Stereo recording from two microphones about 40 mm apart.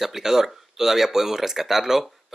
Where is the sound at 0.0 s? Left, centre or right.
Centre.